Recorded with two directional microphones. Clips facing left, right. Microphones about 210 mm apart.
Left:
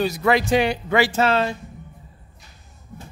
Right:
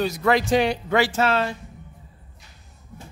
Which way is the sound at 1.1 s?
25° left (ahead or behind).